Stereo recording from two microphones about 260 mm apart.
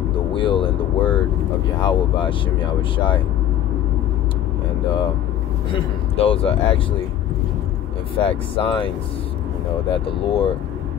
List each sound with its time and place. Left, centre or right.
0.3 s vehicle: centre
1.8 s speech: centre
5.7 s speech: left
8.2 s speech: left
9.9 s speech: left